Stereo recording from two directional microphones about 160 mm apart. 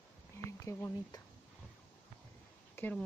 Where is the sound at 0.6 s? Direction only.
20° left (ahead or behind).